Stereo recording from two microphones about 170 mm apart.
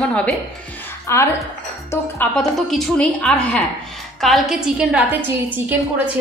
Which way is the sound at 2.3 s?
5° left (ahead or behind).